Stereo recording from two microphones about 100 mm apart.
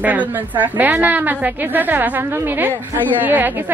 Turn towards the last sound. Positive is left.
turn(degrees=-20)  # may be behind; listen again after turning